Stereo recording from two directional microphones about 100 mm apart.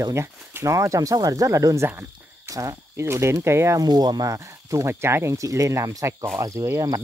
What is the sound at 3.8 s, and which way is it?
Speech, 45° right (ahead or behind).